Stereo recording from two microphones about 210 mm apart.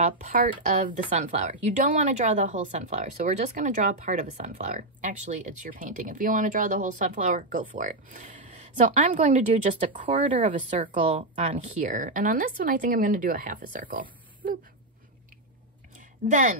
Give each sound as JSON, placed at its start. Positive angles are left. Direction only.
{"t": 0.0, "sound": "speech", "side_deg": -35}
{"t": 16.3, "sound": "speech", "side_deg": -35}